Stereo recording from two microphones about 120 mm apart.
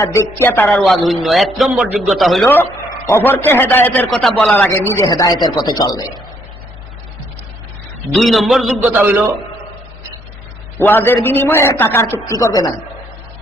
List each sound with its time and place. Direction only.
0.0 s a woman's voice: 25° left (ahead or behind)
1.0 s a man's voice: centre (ahead or behind)
3.1 s a man's voice: 20° left (ahead or behind)
4.1 s a man's voice: centre (ahead or behind); by 5.0 s 20° left (ahead or behind)
5.0 s speech: 35° left (ahead or behind)
8.1 s a man's voice: centre (ahead or behind)
8.8 s a man's voice: 15° right (ahead or behind)
10.8 s a woman's voice: 20° left (ahead or behind)